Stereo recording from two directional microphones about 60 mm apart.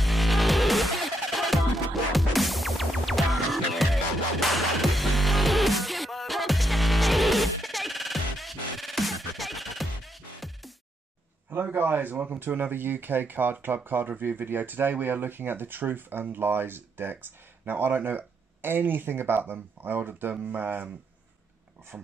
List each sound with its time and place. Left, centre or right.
0.0 s music: centre
11.5 s speech: right
21.9 s speech: right